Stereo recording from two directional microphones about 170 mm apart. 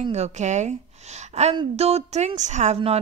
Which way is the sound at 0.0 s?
40° right (ahead or behind).